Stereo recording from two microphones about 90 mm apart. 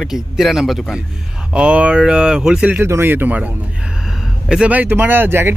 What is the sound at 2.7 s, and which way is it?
Speech, 25° right (ahead or behind).